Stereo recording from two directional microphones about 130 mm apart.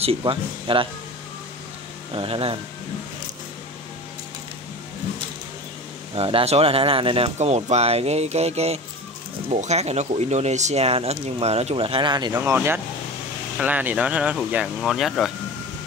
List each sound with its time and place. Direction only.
0.2 s speech: 40° right (ahead or behind)
2.1 s speech: 45° right (ahead or behind)
6.1 s speech: 45° right (ahead or behind)
7.3 s speech: 60° right (ahead or behind); by 12.4 s 35° right (ahead or behind)
12.5 s speech: 15° right (ahead or behind); by 15.3 s centre (ahead or behind)